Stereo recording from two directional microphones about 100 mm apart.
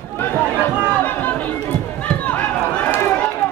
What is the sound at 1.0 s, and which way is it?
Run, 15° left (ahead or behind).